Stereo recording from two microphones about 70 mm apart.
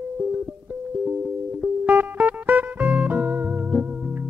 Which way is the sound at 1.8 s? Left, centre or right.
Right.